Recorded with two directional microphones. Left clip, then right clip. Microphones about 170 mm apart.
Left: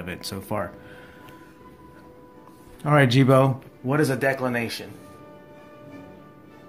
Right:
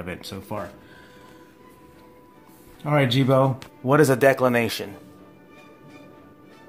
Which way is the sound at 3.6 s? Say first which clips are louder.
Right 5 dB; 55° right (ahead or behind).